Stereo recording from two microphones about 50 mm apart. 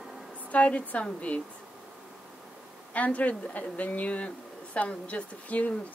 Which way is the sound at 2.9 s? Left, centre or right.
Left.